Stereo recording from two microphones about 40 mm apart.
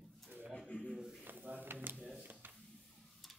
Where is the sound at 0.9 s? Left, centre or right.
Centre.